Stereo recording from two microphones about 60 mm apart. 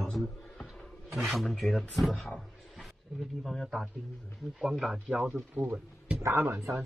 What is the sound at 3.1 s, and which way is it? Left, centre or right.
A man's voice, centre.